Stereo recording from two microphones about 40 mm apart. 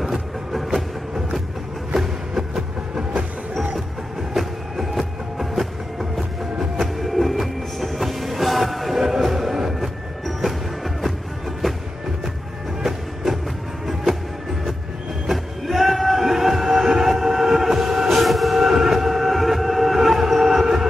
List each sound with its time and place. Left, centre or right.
0.0 s music: centre
2.0 s a sound: centre
3.0 s train: centre
4.3 s music: centre
12.8 s music: centre
15.2 s train: centre